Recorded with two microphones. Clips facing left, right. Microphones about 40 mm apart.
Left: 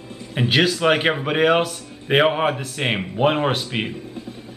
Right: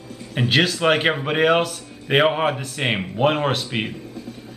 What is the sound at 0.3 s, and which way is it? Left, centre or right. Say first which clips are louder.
Speech: left 1 dB; centre.